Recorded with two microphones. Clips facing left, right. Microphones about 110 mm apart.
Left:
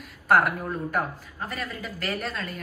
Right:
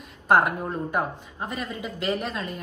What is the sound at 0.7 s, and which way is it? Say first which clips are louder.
A woman's voice: right 1 dB; 20° right (ahead or behind).